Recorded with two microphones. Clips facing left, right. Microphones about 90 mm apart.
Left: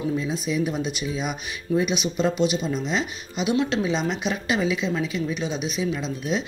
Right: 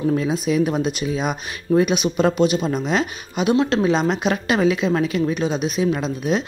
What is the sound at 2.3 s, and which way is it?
Speech, 45° right (ahead or behind).